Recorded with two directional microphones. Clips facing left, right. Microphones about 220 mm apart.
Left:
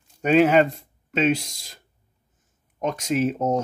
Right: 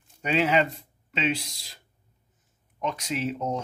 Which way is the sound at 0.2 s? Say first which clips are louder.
Left 7 dB; 50° left (ahead or behind).